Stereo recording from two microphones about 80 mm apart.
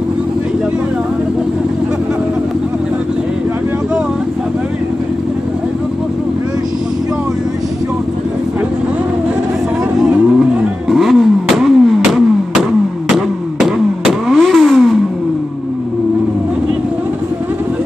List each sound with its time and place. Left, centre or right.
10.9 s vehicle: centre